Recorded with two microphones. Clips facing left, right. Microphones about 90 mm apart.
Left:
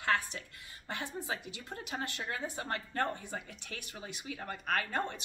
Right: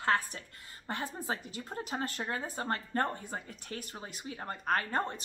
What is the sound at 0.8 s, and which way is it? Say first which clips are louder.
A woman's voice: right 2 dB; 40° right (ahead or behind).